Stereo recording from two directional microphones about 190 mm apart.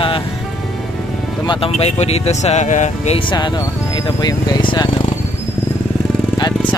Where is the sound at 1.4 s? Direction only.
30° left (ahead or behind).